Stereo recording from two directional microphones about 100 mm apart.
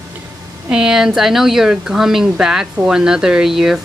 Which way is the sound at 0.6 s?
10° right (ahead or behind).